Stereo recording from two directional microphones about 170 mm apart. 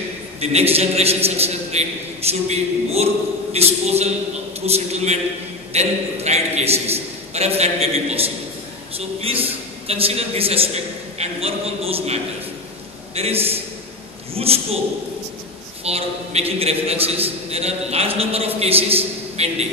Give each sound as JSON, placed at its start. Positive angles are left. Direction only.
{"t": 0.4, "sound": "a man's voice", "side_deg": -40}
{"t": 15.8, "sound": "a man's voice", "side_deg": -35}